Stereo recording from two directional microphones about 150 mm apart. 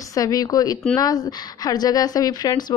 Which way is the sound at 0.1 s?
25° left (ahead or behind).